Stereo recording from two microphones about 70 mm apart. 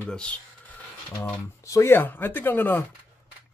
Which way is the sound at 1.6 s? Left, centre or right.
Left.